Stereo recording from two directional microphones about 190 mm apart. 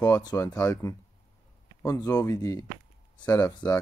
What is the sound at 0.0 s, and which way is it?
Speech, 20° left (ahead or behind).